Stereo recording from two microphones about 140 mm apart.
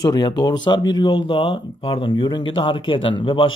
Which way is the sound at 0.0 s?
30° left (ahead or behind).